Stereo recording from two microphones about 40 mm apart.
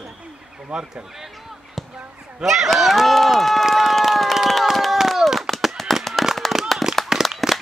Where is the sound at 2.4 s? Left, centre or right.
Centre.